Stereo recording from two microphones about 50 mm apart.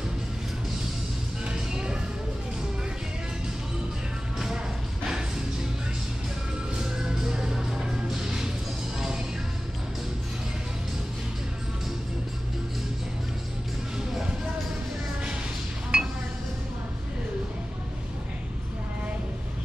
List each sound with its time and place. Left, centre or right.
1.4 s music: centre
6.8 s music: centre
15.9 s chink: centre